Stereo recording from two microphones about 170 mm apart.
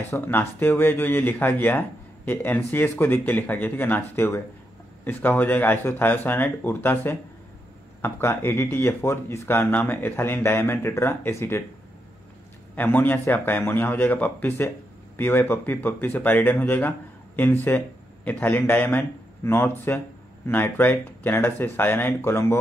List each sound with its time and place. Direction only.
0.1 s speech: 10° left (ahead or behind)
12.7 s speech: 10° left (ahead or behind)